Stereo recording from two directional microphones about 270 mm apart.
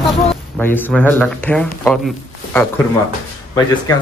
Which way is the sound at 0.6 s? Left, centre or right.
Centre.